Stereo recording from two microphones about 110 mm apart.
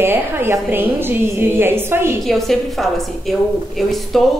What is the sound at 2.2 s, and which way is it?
A woman's voice, centre (ahead or behind).